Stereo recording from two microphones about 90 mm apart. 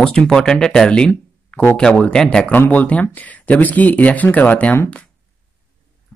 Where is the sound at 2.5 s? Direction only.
20° left (ahead or behind).